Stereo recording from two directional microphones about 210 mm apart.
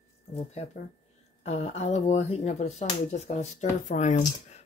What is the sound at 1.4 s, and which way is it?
Speech, 30° left (ahead or behind).